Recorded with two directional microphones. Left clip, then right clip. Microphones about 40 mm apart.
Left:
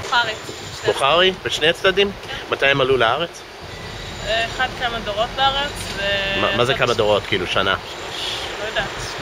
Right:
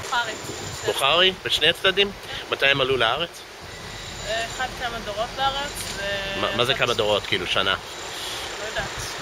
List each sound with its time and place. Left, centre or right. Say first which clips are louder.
0.1 s speech: left 6 dB; centre
4.3 s speech: left 6 dB; right
8.5 s vehicle: left 5 dB; right